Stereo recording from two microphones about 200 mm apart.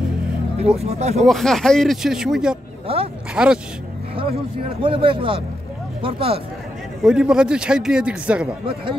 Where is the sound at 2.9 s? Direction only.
30° right (ahead or behind).